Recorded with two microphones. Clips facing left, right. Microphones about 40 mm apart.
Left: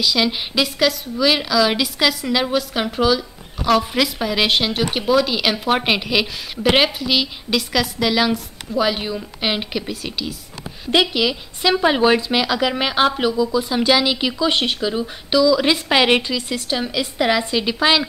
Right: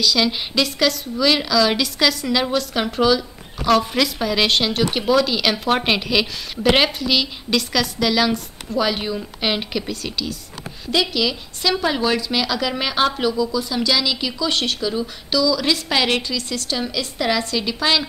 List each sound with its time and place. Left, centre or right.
0.0 s a woman's voice: centre
10.9 s speech: left